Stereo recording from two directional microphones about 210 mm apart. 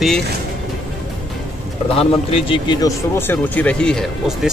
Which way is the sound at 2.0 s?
25° left (ahead or behind).